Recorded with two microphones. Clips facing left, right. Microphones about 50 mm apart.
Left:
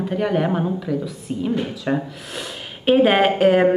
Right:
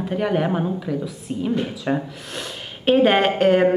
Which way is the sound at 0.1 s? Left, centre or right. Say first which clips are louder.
Even; centre.